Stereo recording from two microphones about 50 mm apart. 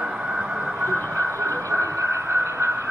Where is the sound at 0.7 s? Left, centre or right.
Right.